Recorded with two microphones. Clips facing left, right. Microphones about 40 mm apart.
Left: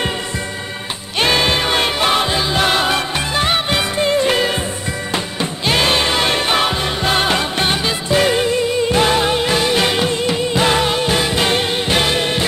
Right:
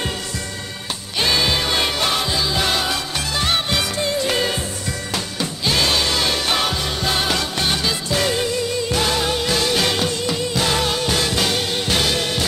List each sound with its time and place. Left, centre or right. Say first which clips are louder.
1.2 s music: left 4 dB; left